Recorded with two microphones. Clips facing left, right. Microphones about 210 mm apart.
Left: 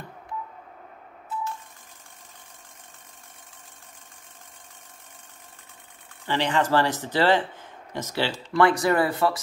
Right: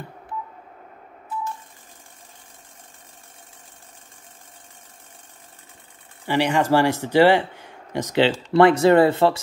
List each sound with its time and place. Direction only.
6.2 s speech: 10° right (ahead or behind)